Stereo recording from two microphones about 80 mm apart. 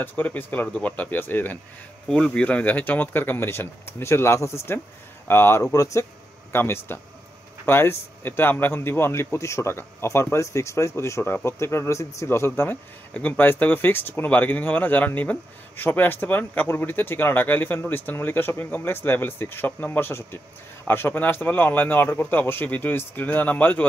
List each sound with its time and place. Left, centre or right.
0.0 s speech: left
6.5 s speech: left